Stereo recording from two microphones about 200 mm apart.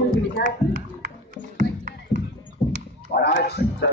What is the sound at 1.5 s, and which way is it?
Music, 45° right (ahead or behind).